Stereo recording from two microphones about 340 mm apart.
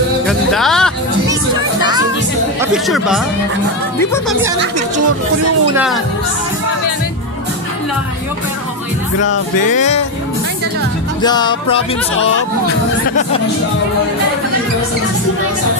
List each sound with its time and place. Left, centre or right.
0.3 s music: centre
1.8 s music: centre
2.6 s speech: centre
9.3 s music: left
11.2 s music: centre